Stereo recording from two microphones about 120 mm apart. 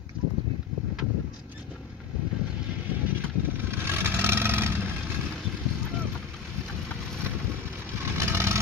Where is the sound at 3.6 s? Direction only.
20° right (ahead or behind).